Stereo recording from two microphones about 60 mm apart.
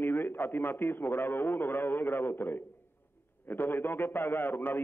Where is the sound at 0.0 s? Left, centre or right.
Left.